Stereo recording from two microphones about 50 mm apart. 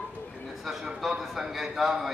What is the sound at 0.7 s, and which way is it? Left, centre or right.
A man's voice, centre.